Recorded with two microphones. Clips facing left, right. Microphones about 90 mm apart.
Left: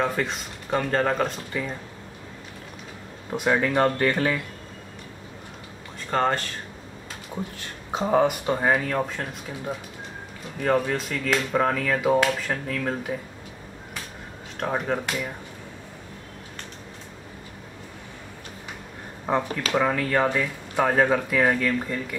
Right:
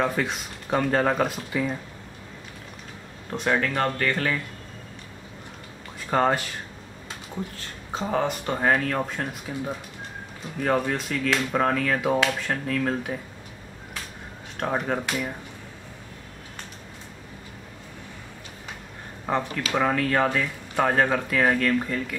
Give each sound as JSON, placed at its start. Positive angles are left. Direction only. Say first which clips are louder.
{"t": 0.0, "sound": "speech", "louder": "even", "side_deg": -5}
{"t": 3.3, "sound": "speech", "louder": "left 2 dB", "side_deg": 10}
{"t": 6.0, "sound": "speech", "louder": "right 1 dB", "side_deg": -10}
{"t": 7.9, "sound": "speech", "louder": "left 5 dB", "side_deg": 20}
{"t": 8.5, "sound": "speech", "louder": "even", "side_deg": 5}
{"t": 14.6, "sound": "speech", "louder": "even", "side_deg": -5}
{"t": 19.2, "sound": "speech", "louder": "left 2 dB", "side_deg": 5}